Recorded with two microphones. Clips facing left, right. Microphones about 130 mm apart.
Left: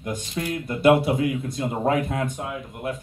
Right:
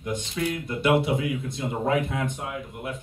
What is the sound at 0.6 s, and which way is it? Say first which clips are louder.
Speech: left 6 dB; 40° left (ahead or behind).